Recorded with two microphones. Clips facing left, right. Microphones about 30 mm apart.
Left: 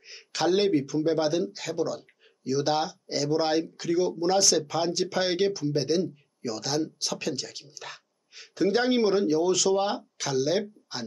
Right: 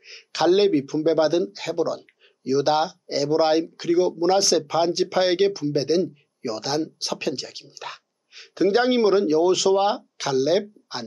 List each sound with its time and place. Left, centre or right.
0.0 s speech: centre